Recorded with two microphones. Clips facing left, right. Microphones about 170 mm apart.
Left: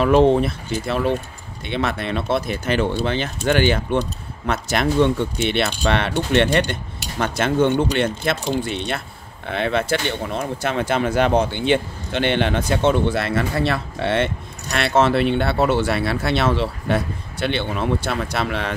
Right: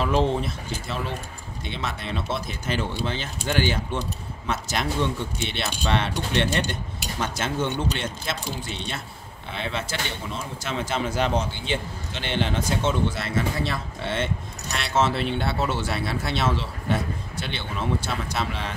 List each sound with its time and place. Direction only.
0.0 s speech: 60° left (ahead or behind)